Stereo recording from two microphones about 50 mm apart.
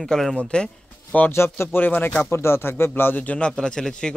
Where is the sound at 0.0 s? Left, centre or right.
Centre.